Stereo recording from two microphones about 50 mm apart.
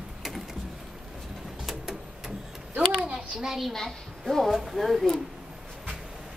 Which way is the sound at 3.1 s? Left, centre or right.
Right.